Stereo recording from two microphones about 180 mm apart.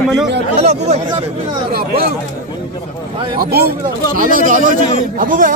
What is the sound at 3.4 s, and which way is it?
A man's voice, 60° right (ahead or behind).